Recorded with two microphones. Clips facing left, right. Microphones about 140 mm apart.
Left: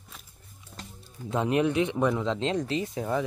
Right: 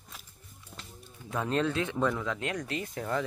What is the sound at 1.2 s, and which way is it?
Speech, 20° left (ahead or behind).